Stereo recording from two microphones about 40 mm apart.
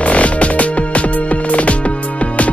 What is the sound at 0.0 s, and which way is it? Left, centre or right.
Music, left.